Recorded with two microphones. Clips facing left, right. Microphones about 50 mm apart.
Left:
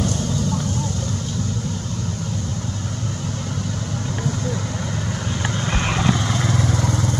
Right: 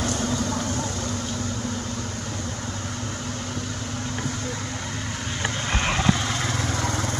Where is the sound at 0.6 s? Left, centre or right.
Right.